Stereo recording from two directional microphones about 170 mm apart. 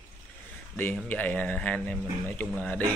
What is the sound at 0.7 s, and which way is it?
A man's voice, 10° left (ahead or behind).